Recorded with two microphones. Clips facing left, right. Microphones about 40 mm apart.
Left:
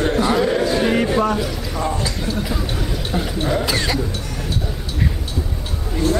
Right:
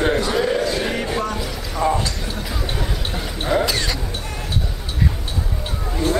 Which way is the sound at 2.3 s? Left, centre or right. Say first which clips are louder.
Left 3 dB; centre.